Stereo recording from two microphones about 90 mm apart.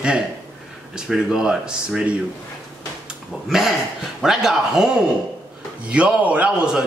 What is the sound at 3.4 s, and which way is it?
A man's voice, 5° right (ahead or behind).